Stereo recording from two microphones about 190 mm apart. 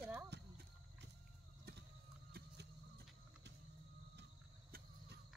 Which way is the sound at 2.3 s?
55° right (ahead or behind).